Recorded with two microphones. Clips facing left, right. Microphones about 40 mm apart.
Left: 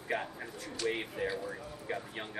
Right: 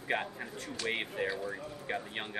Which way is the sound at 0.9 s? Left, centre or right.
Right.